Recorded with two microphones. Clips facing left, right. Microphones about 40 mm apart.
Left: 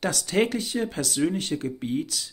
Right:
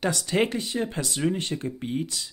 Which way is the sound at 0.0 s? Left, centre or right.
Right.